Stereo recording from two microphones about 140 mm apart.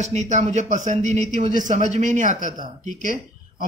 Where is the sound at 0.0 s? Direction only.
55° right (ahead or behind).